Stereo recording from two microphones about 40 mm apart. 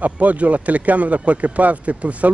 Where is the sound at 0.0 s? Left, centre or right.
Right.